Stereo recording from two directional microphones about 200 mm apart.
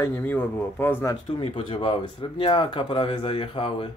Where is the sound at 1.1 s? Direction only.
30° left (ahead or behind).